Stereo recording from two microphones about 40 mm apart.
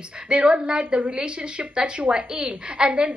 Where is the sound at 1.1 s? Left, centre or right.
Right.